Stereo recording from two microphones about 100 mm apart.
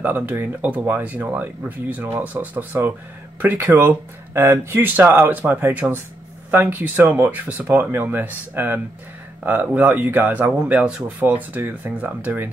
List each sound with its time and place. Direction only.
0.0 s speech: 20° right (ahead or behind)